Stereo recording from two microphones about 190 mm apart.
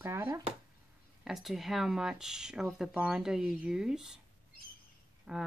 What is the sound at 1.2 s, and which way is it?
Speech, centre (ahead or behind).